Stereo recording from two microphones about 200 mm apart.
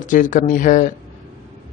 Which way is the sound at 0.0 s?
40° left (ahead or behind).